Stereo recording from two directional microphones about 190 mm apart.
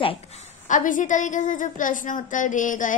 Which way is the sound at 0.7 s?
45° left (ahead or behind).